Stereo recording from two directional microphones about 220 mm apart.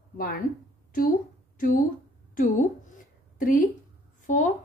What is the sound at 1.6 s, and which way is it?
A woman's voice, 40° left (ahead or behind).